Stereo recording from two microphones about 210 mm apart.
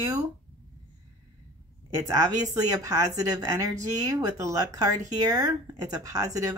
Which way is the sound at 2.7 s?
15° right (ahead or behind).